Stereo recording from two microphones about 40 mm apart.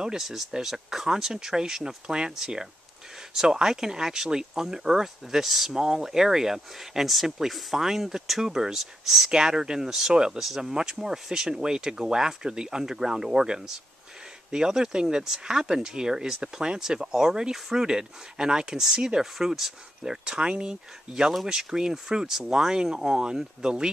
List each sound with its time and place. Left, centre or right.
0.0 s speech: centre
20.1 s speech: right